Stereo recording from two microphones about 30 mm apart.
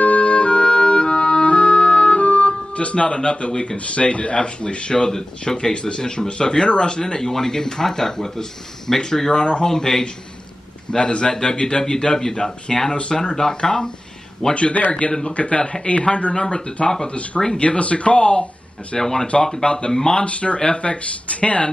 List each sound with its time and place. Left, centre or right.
0.0 s music: left
3.7 s speech: left; by 9.3 s centre
9.3 s speech: left
9.7 s speech: centre
10.9 s speech: left
11.2 s speech: left
14.5 s a man's voice: left
18.9 s speech: left
19.9 s speech: centre
20.2 s speech: left